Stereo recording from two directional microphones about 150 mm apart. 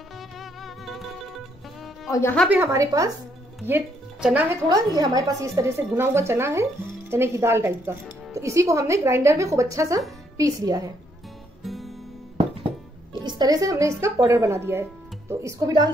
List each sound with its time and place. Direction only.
0.4 s music: centre (ahead or behind)
2.0 s speech: 20° left (ahead or behind)
2.5 s a woman's voice: 15° right (ahead or behind)
3.6 s speech: 10° right (ahead or behind)
4.6 s a woman's voice: 25° right (ahead or behind)
11.6 s music: centre (ahead or behind)
13.4 s a woman's voice: 25° right (ahead or behind)